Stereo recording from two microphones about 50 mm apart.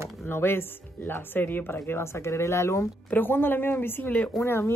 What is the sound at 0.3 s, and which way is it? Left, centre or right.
Speech, left.